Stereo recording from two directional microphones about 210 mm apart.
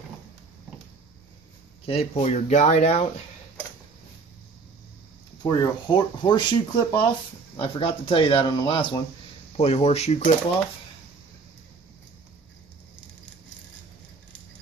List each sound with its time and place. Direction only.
1.9 s speech: 30° left (ahead or behind)
5.4 s speech: 20° left (ahead or behind)